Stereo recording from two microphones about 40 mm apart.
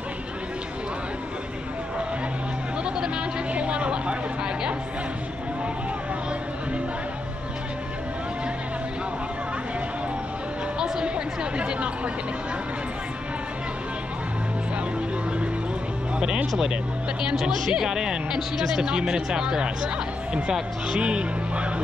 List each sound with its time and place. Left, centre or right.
2.8 s a sound: right
11.5 s chatter: right
17.2 s speech: centre
21.0 s speech: right